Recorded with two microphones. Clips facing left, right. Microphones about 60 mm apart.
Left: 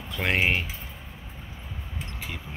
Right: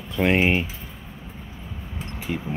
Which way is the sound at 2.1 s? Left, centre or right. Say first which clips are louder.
Right 12 dB; centre.